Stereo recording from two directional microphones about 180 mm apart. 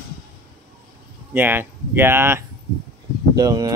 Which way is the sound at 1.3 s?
10° right (ahead or behind).